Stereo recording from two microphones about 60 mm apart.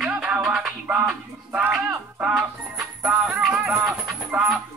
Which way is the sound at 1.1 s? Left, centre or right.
Right.